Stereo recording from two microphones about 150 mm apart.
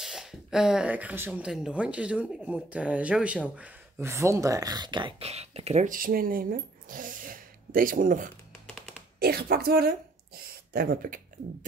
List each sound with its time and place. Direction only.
0.0 s speech: 5° right (ahead or behind); by 5.1 s 30° right (ahead or behind)
5.2 s speech: 45° right (ahead or behind)
5.9 s speech: 65° right (ahead or behind)
9.2 s speech: 90° right